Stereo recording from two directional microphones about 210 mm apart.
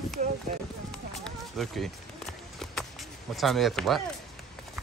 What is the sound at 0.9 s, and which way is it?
Run, centre (ahead or behind).